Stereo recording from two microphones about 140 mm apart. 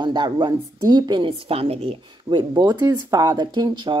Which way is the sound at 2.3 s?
30° right (ahead or behind).